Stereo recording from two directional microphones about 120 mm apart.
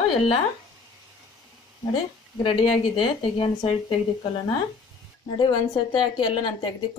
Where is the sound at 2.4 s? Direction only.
45° left (ahead or behind).